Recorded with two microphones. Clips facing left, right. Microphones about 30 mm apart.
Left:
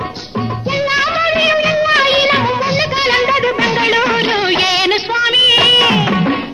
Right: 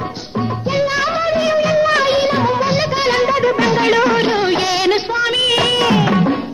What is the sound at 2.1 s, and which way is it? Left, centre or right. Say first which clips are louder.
Music of bollywood: left 3 dB; left.